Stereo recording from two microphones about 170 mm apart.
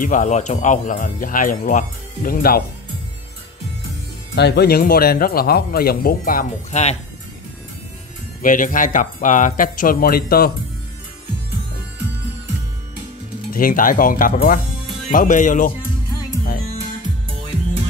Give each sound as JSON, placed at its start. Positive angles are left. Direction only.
{"t": 0.0, "sound": "speech", "side_deg": 50}
{"t": 4.4, "sound": "speech", "side_deg": 75}
{"t": 8.4, "sound": "speech", "side_deg": 50}
{"t": 13.5, "sound": "speech", "side_deg": 55}